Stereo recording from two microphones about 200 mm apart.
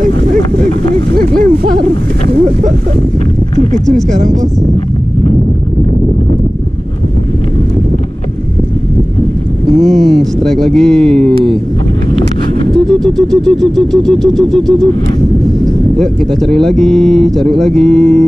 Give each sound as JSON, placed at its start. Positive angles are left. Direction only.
{"t": 1.6, "sound": "a sound", "side_deg": -50}
{"t": 9.7, "sound": "speech", "side_deg": 0}
{"t": 12.7, "sound": "speech", "side_deg": 0}